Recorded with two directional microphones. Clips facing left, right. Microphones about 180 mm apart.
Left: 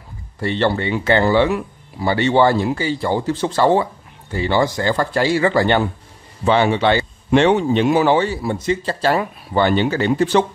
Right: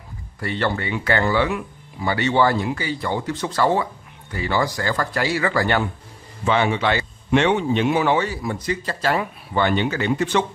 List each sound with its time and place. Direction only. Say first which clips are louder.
0.4 s speech: left 5 dB; 25° left (ahead or behind)